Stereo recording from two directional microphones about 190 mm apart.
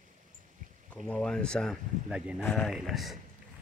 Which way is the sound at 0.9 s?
5° left (ahead or behind).